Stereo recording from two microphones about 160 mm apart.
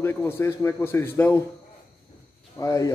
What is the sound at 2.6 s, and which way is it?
Speech, 20° left (ahead or behind).